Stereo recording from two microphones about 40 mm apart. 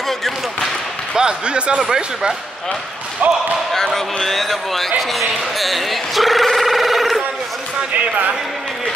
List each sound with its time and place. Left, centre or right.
1.1 s speech: right
3.2 s speech: right
3.7 s speech: centre